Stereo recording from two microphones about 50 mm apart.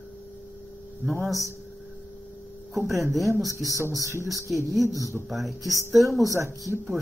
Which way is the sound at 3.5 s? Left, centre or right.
Right.